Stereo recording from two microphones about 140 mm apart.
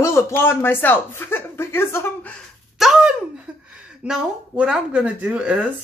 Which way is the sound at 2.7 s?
5° right (ahead or behind).